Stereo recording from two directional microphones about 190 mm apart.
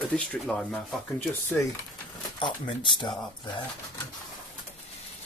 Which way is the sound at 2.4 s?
25° left (ahead or behind).